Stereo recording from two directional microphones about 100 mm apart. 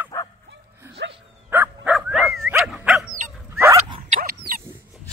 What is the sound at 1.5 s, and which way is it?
Bow-wow, 15° right (ahead or behind).